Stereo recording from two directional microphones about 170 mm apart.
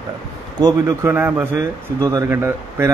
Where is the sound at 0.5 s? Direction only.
25° right (ahead or behind).